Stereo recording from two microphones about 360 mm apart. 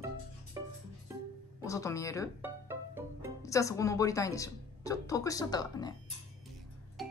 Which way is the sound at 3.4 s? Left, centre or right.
Centre.